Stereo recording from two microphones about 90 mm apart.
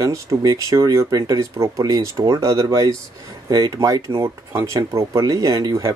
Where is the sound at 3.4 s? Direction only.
45° right (ahead or behind).